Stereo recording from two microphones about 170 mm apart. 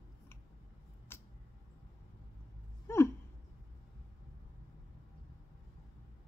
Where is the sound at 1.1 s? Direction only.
15° left (ahead or behind).